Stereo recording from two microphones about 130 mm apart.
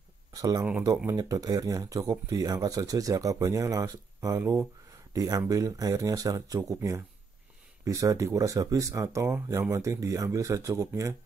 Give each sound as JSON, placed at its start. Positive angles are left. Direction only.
{"t": 0.3, "sound": "speech", "side_deg": -30}